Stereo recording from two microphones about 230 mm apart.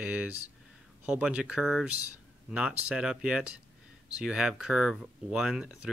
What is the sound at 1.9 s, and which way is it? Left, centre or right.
Speech, left.